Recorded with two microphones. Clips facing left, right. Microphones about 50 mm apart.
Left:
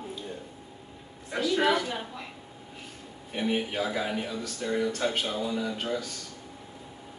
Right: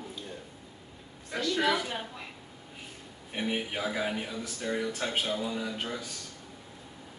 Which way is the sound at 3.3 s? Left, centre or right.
Centre.